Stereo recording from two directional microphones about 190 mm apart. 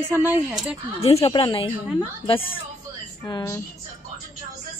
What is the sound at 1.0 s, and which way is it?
Speech, 30° left (ahead or behind).